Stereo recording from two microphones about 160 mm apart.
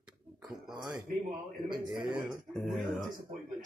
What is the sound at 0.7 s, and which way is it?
A man's voice, 5° right (ahead or behind).